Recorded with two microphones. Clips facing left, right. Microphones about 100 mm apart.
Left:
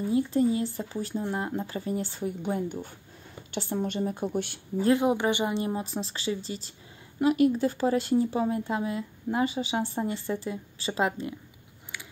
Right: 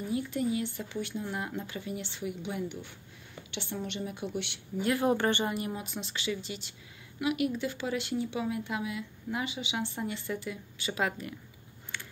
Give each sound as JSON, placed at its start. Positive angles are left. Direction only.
{"t": 0.1, "sound": "speech", "side_deg": 30}
{"t": 4.9, "sound": "speech", "side_deg": 15}
{"t": 5.5, "sound": "speech", "side_deg": 30}
{"t": 11.9, "sound": "a sound", "side_deg": 5}